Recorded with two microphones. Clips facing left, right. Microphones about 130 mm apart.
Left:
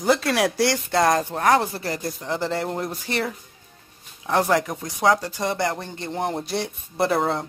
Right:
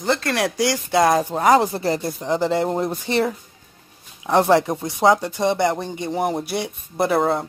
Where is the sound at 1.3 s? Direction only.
15° right (ahead or behind).